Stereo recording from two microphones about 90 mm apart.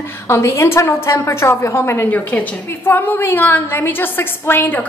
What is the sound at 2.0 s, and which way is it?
A woman's voice, 20° left (ahead or behind).